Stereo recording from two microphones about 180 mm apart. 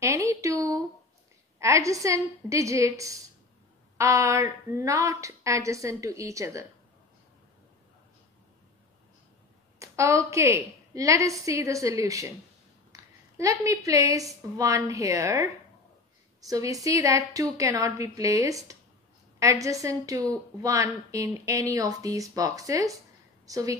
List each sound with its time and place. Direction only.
0.0 s a sound: 15° right (ahead or behind)
1.6 s a woman's voice: 15° right (ahead or behind)
9.8 s a woman's voice: 15° right (ahead or behind)